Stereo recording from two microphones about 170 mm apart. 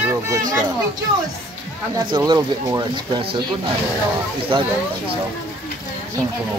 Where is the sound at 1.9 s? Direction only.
25° right (ahead or behind).